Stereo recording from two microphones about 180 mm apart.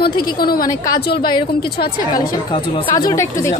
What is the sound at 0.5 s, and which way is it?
Speech, 20° left (ahead or behind).